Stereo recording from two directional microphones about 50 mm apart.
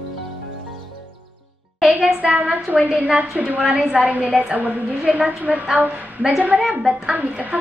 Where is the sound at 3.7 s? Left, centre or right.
Centre.